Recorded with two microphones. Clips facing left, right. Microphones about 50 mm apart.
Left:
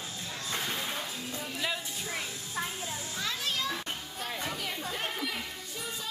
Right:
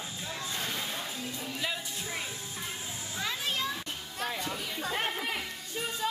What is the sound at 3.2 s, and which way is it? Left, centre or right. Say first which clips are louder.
Children playing: right 1 dB; centre.